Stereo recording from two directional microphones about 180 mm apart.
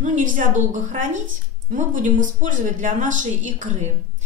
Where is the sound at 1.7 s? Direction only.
45° right (ahead or behind).